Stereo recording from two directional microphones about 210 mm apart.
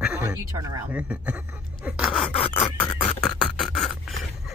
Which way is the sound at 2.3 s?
25° left (ahead or behind).